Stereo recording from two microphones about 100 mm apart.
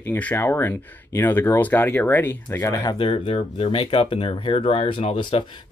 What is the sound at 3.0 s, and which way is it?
Speech, 65° left (ahead or behind).